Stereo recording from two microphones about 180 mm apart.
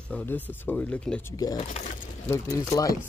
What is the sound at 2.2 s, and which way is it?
Speech, 15° left (ahead or behind).